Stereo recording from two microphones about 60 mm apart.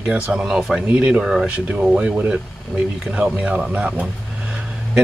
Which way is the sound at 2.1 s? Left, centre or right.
Right.